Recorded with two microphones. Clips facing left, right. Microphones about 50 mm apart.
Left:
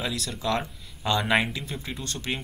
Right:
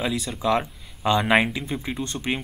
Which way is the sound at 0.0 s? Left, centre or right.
Centre.